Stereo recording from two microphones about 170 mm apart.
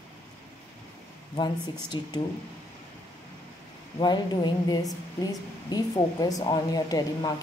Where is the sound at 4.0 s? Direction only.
25° left (ahead or behind).